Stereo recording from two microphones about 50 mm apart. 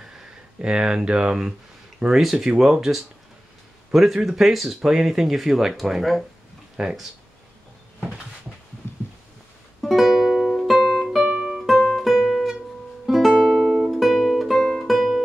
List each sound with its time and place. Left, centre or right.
0.6 s speech: centre
6.8 s speech: centre
8.8 s a sound: left
9.8 s music: centre
11.2 s music: centre
11.6 s music: centre
13.6 s music: centre
13.8 s music: centre